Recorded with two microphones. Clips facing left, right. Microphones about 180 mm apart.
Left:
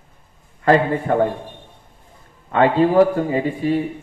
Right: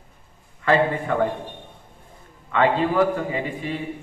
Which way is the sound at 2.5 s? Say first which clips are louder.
Left 5 dB; 40° left (ahead or behind).